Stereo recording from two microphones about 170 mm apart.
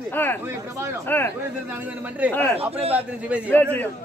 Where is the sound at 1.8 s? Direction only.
10° right (ahead or behind).